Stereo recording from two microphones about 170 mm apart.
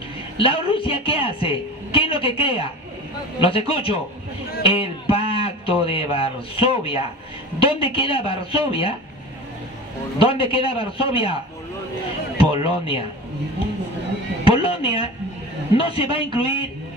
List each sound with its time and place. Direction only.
0.4 s a man's voice: 35° left (ahead or behind)
10.1 s a man's voice: 35° left (ahead or behind)
12.4 s speech: 35° left (ahead or behind)
14.4 s a man's voice: 35° left (ahead or behind)